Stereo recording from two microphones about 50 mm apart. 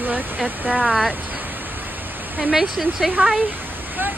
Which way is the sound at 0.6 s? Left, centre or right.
Right.